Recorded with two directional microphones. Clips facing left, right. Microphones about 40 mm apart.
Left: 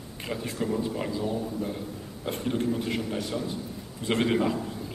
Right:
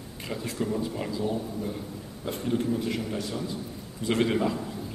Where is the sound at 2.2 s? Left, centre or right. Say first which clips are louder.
Even; left; by 4.6 s centre.